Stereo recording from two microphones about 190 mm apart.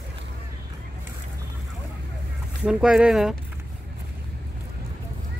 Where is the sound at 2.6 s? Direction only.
5° right (ahead or behind).